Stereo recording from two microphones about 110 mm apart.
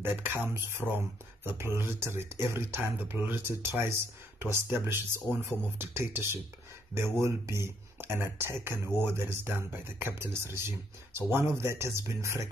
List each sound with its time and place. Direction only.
0.5 s speech: 20° right (ahead or behind)